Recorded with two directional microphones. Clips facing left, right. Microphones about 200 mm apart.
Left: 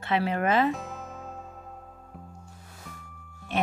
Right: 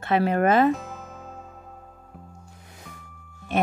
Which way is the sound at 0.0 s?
50° right (ahead or behind).